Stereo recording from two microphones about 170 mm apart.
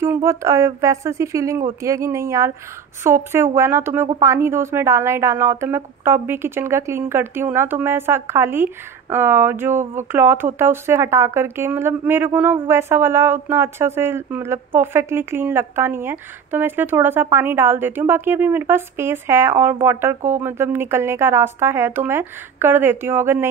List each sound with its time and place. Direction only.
0.0 s speech: 15° right (ahead or behind)